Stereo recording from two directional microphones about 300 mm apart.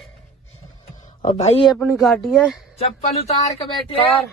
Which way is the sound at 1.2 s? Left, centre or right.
Left.